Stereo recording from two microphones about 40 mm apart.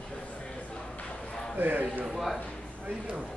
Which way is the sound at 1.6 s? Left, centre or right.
Right.